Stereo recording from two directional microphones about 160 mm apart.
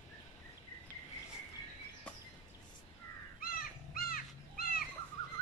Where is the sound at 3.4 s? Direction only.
65° left (ahead or behind).